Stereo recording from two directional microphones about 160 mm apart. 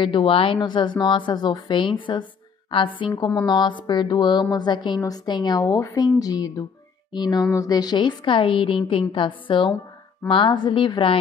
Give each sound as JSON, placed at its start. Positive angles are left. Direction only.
{"t": 0.0, "sound": "a woman's voice", "side_deg": 30}
{"t": 7.1, "sound": "a sound", "side_deg": 25}
{"t": 7.5, "sound": "a woman's voice", "side_deg": 25}